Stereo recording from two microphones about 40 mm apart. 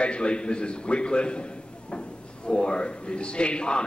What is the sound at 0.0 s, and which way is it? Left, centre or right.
A man's voice, left.